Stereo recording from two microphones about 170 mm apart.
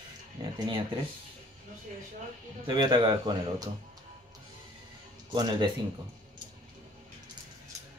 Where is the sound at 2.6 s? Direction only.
25° right (ahead or behind).